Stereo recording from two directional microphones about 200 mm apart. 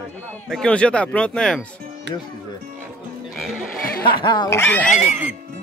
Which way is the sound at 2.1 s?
60° right (ahead or behind).